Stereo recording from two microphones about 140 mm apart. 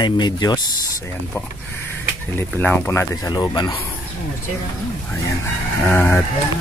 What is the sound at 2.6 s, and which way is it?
Speech, 15° left (ahead or behind).